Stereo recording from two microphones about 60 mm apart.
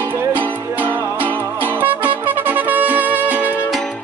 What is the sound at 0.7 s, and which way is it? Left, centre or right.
Music, right.